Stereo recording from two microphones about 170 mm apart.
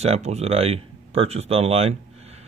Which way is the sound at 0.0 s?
40° right (ahead or behind).